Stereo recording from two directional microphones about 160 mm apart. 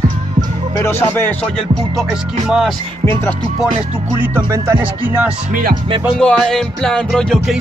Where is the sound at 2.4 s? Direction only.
5° right (ahead or behind).